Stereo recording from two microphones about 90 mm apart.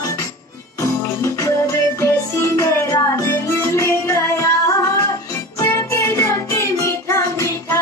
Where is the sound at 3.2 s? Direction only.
35° left (ahead or behind).